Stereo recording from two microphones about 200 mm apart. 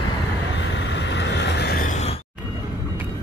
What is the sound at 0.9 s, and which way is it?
Vehicle, 60° left (ahead or behind).